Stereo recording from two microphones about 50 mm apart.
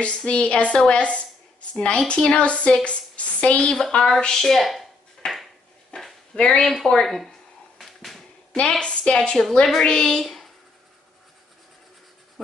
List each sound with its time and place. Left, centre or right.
0.0 s a woman's voice: left
4.2 s speech: centre
5.2 s dishes: centre
5.9 s a sound: centre
6.3 s a woman's voice: left
6.6 s a child's voice: centre
7.8 s a sound: centre
8.5 s a woman's voice: left